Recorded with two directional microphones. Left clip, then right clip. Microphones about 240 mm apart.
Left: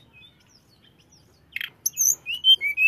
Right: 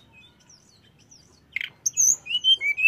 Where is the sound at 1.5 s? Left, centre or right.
Centre.